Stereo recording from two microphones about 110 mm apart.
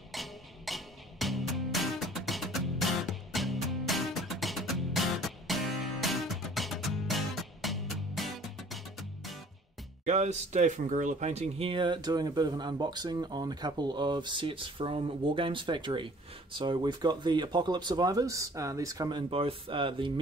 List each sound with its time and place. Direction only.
0.1 s music: centre (ahead or behind)
10.0 s speech: 90° right; by 19.2 s 35° right (ahead or behind)
19.3 s speech: 55° right (ahead or behind)